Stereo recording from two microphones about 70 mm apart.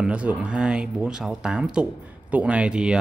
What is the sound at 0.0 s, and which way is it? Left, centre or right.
Speech, centre.